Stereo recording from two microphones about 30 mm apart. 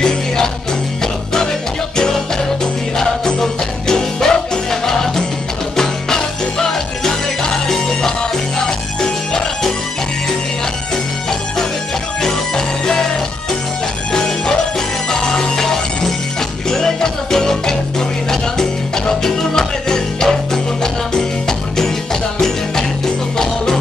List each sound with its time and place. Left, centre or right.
1.0 s music: centre
2.6 s music: centre
12.2 s music: centre
14.1 s music: left